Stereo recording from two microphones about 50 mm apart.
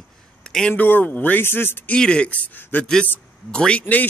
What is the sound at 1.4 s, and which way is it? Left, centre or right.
Speech, left.